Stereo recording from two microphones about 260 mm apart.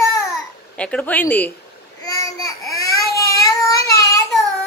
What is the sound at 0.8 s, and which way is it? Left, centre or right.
Speech, centre.